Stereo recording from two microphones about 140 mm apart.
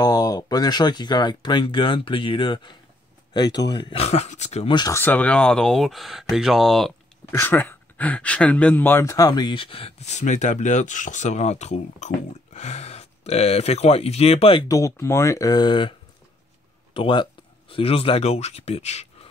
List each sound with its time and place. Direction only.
0.0 s speech: 25° left (ahead or behind)
4.0 s speech: 50° left (ahead or behind)
4.6 s speech: 30° left (ahead or behind)
4.9 s speech: 15° left (ahead or behind)
7.2 s speech: 15° left (ahead or behind); by 14.6 s 45° left (ahead or behind)
14.7 s speech: 20° left (ahead or behind); by 19.0 s 50° left (ahead or behind)